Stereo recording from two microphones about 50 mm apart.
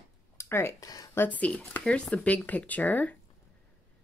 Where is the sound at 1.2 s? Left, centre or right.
Left.